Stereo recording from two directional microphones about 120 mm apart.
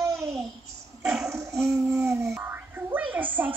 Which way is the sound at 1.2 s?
25° right (ahead or behind).